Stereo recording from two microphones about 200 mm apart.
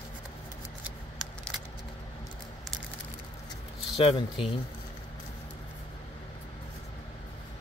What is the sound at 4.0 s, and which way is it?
Speech, 30° left (ahead or behind).